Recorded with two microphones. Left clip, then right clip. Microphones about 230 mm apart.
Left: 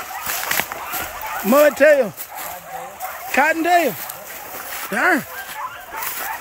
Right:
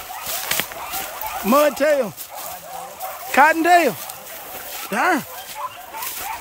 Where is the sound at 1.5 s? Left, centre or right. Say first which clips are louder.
Left 4 dB; centre.